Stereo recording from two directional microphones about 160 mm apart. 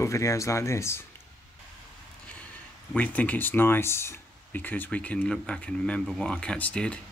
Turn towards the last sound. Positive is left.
turn(degrees=5)  # may be behind; listen again after turning